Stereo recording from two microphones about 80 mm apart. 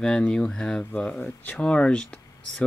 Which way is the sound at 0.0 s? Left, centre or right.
Centre.